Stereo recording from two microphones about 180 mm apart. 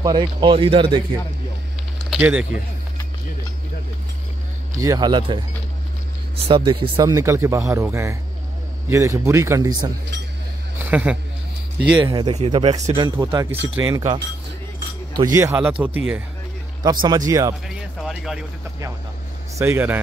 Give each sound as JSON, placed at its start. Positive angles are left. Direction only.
{"t": 0.0, "sound": "speech", "side_deg": -25}
{"t": 2.0, "sound": "speech", "side_deg": -10}
{"t": 4.7, "sound": "speech", "side_deg": -20}
{"t": 10.9, "sound": "speech", "side_deg": -10}
{"t": 12.0, "sound": "speech", "side_deg": -25}
{"t": 17.0, "sound": "speech", "side_deg": -20}
{"t": 17.6, "sound": "speech", "side_deg": 0}
{"t": 19.6, "sound": "speech", "side_deg": -10}